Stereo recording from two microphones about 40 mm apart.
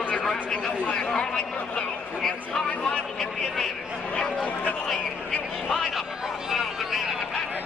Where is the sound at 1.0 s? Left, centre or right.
Left.